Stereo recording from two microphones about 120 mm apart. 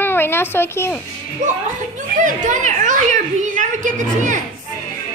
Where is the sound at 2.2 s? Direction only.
90° right.